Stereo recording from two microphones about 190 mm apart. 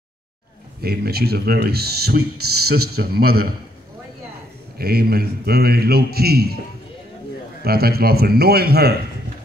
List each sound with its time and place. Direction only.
0.8 s a man's voice: 55° right (ahead or behind)
4.7 s a man's voice: 55° right (ahead or behind)
7.6 s a man's voice: 55° right (ahead or behind)